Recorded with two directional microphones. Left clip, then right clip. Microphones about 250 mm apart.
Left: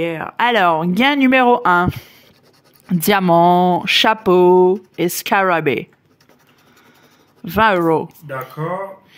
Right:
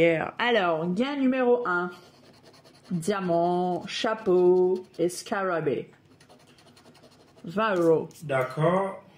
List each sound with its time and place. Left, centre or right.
0.0 s speech: centre; by 1.9 s left
3.0 s speech: left
7.4 s speech: left